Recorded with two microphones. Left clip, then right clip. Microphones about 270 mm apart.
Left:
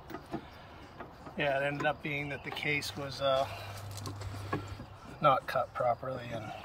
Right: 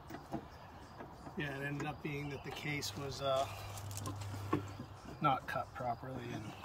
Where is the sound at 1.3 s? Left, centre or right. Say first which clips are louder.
Left 11 dB; centre.